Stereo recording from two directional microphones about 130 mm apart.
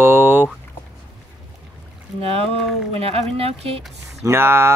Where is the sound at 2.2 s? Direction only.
50° right (ahead or behind).